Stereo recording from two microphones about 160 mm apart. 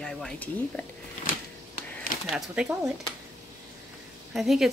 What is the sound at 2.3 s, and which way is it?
Speech, 5° right (ahead or behind).